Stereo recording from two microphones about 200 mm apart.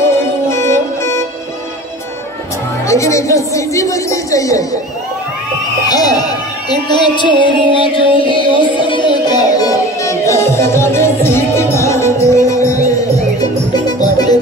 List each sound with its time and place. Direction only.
0.0 s music: 15° left (ahead or behind)
2.9 s speech: 15° left (ahead or behind)
5.9 s speech: 20° left (ahead or behind)
7.4 s music: 25° left (ahead or behind)
8.5 s music: 25° right (ahead or behind)
8.8 s music: 25° left (ahead or behind)